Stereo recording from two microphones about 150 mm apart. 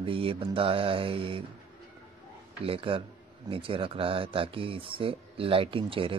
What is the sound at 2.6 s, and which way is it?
Speech, 35° right (ahead or behind).